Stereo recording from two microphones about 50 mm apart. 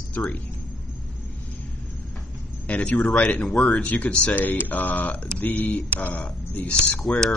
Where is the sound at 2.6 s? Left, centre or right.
Left.